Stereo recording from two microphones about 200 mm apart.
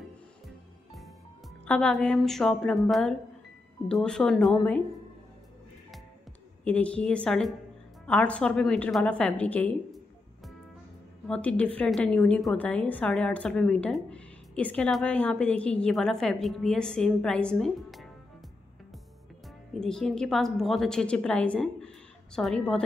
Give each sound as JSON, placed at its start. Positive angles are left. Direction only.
{"t": 1.7, "sound": "a woman's voice", "side_deg": 5}
{"t": 6.6, "sound": "a woman's voice", "side_deg": 5}
{"t": 19.7, "sound": "a woman's voice", "side_deg": 0}